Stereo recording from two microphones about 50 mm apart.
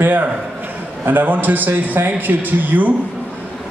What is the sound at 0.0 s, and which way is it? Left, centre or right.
A man's voice, right.